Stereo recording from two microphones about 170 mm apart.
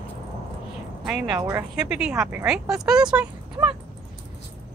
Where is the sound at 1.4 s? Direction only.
20° right (ahead or behind).